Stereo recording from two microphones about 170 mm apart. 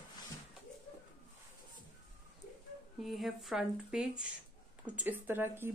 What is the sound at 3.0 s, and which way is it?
Speech, centre (ahead or behind).